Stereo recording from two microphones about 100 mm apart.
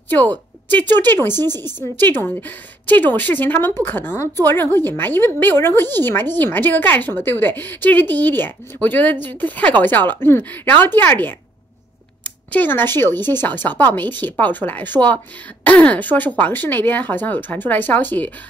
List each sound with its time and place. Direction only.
0.1 s a woman's voice: 20° left (ahead or behind)